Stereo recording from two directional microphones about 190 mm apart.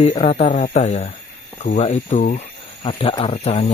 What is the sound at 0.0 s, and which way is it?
Speech, 30° left (ahead or behind).